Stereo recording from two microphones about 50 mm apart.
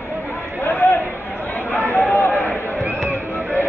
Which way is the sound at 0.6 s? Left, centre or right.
Left.